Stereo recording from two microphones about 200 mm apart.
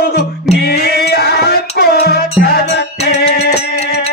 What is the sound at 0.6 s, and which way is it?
Music, 50° left (ahead or behind).